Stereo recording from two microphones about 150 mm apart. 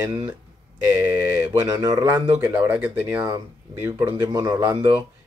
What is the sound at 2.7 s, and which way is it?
Speech, 10° right (ahead or behind).